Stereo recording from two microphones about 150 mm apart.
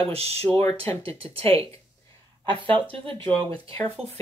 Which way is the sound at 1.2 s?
40° right (ahead or behind).